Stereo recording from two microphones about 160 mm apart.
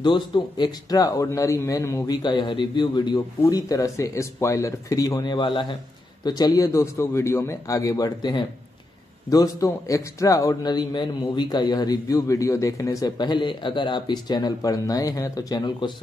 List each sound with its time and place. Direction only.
0.0 s a man's voice: 30° left (ahead or behind)